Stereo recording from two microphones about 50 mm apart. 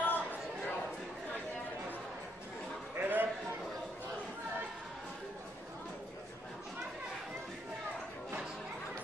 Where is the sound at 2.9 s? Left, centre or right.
Right.